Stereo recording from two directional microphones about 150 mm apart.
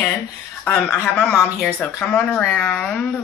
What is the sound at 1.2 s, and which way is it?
Speech, 10° left (ahead or behind).